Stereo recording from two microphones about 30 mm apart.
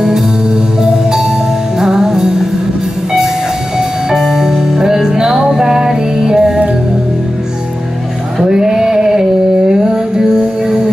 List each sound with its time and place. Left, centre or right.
1.8 s music: centre
4.3 s music: centre
8.4 s male singing: right
9.7 s music: right